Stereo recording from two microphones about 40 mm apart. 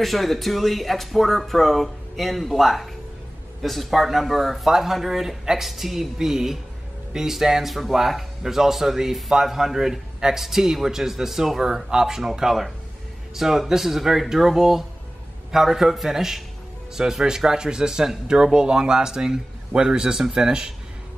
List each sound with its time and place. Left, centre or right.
0.0 s a man's voice: centre